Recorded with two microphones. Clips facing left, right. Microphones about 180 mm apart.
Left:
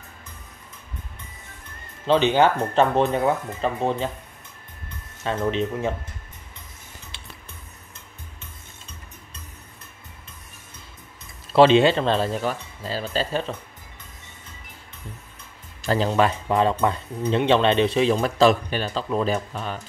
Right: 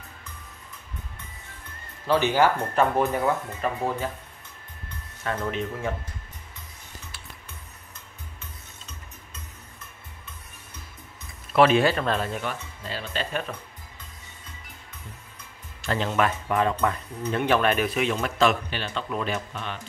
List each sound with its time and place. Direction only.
2.0 s speech: 20° left (ahead or behind)
5.2 s speech: 25° left (ahead or behind)
11.5 s speech: 25° left (ahead or behind)
15.8 s speech: 35° left (ahead or behind)